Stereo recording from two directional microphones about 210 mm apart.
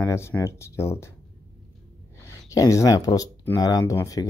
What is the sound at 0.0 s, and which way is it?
Speech, 10° left (ahead or behind).